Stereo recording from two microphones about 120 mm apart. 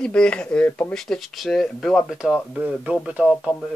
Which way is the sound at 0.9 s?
5° left (ahead or behind).